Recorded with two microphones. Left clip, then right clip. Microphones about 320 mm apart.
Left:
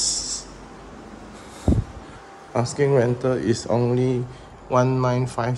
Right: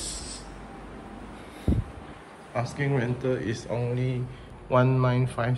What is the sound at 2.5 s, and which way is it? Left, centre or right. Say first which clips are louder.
Speech: left 9 dB; centre.